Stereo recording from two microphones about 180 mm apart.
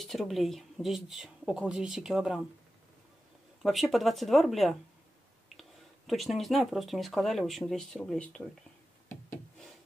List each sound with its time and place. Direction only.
0.0 s speech: centre (ahead or behind)
3.6 s speech: centre (ahead or behind)